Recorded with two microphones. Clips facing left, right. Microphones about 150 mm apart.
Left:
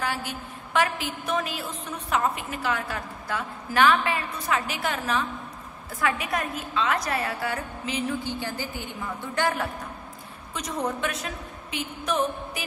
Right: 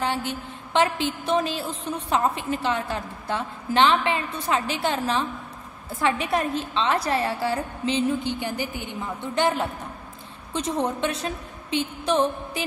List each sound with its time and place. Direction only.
0.0 s a woman's voice: 25° right (ahead or behind)